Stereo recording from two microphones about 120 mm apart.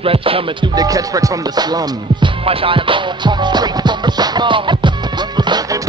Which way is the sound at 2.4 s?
50° right (ahead or behind).